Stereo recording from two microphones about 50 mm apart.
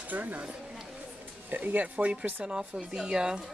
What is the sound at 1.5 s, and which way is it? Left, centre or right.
Speech, right.